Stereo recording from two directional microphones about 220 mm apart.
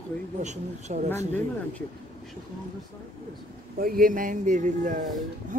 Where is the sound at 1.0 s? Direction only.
10° left (ahead or behind).